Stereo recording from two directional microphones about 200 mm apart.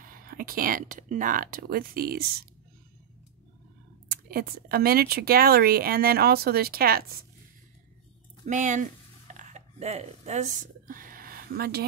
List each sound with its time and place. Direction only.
0.0 s speech: 45° right (ahead or behind)
4.1 s speech: 50° right (ahead or behind)
8.5 s speech: 40° right (ahead or behind)
9.4 s a sound: 35° right (ahead or behind); by 11.8 s 50° right (ahead or behind)